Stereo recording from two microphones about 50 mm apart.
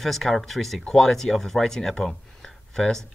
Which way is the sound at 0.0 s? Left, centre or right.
Centre.